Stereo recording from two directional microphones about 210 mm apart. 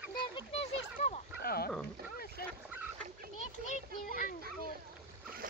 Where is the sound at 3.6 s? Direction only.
35° left (ahead or behind).